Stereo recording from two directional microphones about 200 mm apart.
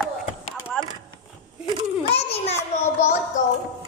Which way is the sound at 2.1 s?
30° left (ahead or behind).